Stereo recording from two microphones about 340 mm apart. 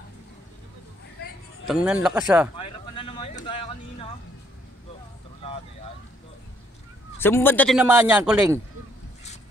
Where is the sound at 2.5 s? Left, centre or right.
Centre.